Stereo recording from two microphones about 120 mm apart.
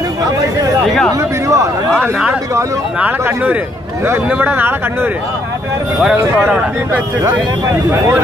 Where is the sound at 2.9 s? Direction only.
15° right (ahead or behind).